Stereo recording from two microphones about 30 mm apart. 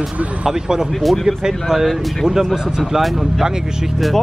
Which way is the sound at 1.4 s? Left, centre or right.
Centre.